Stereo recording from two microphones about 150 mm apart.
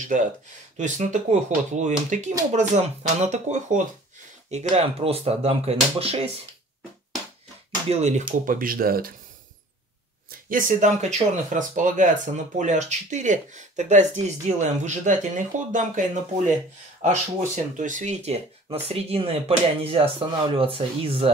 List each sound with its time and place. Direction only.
0.0 s speech: 60° right (ahead or behind); by 6.3 s 40° right (ahead or behind)
7.9 s speech: 50° right (ahead or behind)
8.5 s speech: 70° right (ahead or behind)
10.5 s speech: 60° right (ahead or behind)
17.0 s speech: 55° right (ahead or behind)